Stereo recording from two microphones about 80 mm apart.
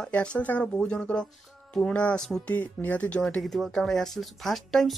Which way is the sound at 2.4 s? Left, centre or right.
Left.